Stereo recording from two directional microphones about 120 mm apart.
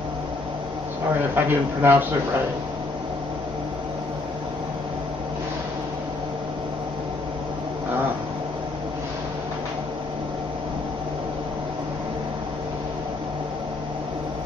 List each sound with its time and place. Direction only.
1.3 s a man's voice: 15° right (ahead or behind)